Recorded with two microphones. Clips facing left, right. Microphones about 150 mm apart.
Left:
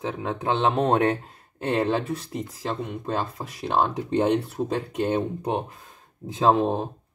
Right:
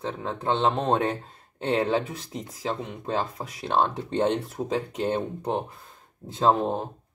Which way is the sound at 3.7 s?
10° left (ahead or behind).